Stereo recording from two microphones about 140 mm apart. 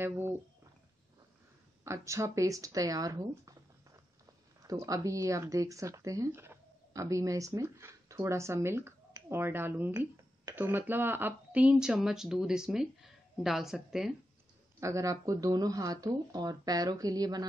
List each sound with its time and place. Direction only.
1.9 s speech: 20° right (ahead or behind); by 14.1 s 5° right (ahead or behind)
14.8 s speech: 20° right (ahead or behind)